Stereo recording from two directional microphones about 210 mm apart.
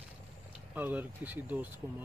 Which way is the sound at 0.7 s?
10° right (ahead or behind).